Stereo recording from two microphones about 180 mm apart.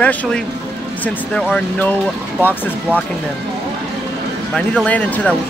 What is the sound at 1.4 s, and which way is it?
Speech, 5° left (ahead or behind).